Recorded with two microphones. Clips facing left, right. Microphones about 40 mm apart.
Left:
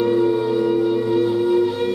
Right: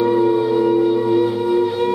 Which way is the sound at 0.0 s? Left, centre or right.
Centre.